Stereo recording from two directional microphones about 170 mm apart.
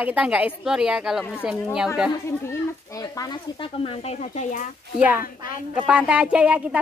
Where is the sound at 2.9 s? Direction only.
20° left (ahead or behind); by 4.6 s 45° left (ahead or behind).